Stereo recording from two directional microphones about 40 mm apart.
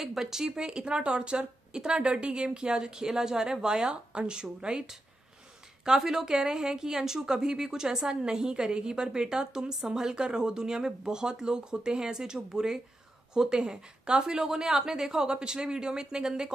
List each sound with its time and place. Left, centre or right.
0.0 s a woman's voice: centre
5.9 s a woman's voice: centre